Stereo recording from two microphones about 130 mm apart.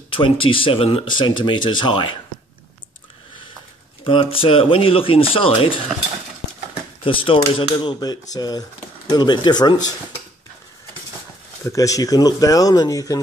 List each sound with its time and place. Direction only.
0.1 s speech: 40° left (ahead or behind)
4.0 s speech: 40° left (ahead or behind)
7.0 s speech: 45° left (ahead or behind)
11.6 s speech: 25° left (ahead or behind)